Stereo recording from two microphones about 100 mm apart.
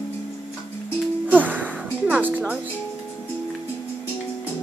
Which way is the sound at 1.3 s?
15° right (ahead or behind).